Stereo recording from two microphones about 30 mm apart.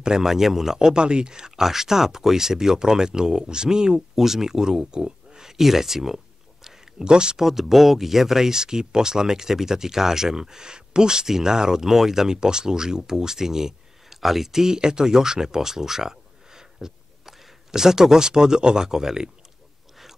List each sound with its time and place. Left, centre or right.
0.2 s speech: centre
0.7 s speech: right
1.6 s speech: centre
4.1 s speech: centre
5.6 s speech: centre
7.1 s speech: right
7.3 s speech: centre
12.4 s speech: right